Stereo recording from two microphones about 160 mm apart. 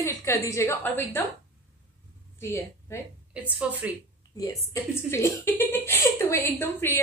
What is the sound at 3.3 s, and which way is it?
Speech, 10° right (ahead or behind).